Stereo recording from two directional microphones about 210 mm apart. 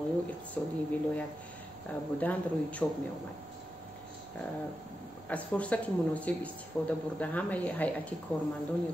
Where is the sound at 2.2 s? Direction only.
5° left (ahead or behind).